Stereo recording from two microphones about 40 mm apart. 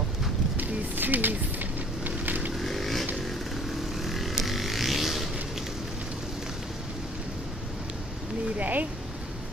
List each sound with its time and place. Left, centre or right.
0.6 s vehicle: right
2.6 s vehicle: centre
8.5 s a sound: right